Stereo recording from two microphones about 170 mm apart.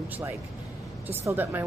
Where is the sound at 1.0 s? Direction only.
10° right (ahead or behind).